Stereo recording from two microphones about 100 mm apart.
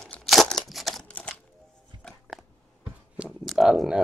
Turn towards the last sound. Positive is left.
turn(degrees=-5)  # may be behind; listen again after turning